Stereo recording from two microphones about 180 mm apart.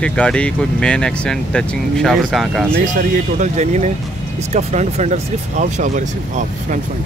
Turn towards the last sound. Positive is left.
turn(degrees=-40)  # may be behind; listen again after turning